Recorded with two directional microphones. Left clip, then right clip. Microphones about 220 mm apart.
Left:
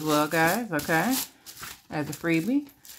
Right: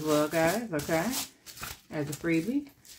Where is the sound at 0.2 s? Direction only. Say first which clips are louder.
Left 3 dB; 50° left (ahead or behind).